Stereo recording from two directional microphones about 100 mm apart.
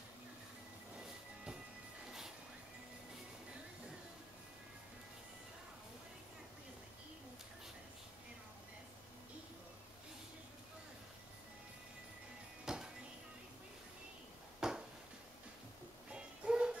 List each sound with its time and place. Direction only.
12.6 s music: 5° right (ahead or behind)
14.6 s a sound: 5° right (ahead or behind)
16.1 s music: 10° right (ahead or behind)